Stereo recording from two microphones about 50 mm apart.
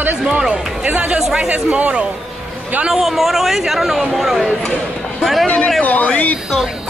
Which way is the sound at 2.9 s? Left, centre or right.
Centre.